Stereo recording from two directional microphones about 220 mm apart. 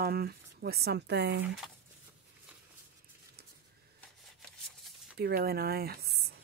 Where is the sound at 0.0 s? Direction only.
45° right (ahead or behind).